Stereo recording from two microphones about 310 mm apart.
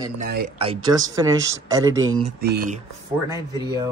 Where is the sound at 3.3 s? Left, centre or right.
Centre.